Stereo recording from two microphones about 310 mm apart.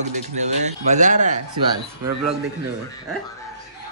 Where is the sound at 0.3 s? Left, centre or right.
Right.